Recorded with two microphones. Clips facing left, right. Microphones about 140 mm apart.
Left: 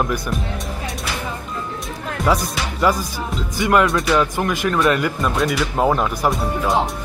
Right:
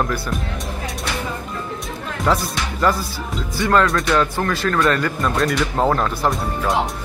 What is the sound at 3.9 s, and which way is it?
Speech, centre (ahead or behind).